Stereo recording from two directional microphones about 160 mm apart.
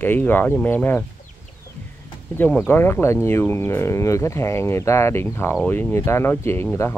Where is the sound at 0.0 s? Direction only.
10° left (ahead or behind).